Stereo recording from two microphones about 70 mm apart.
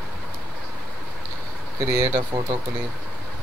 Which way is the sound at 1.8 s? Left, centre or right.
Right.